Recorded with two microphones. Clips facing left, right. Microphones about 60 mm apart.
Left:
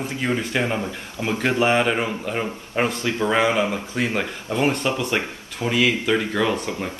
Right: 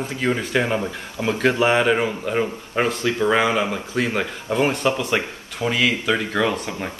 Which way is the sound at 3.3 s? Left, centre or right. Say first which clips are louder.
Even; centre.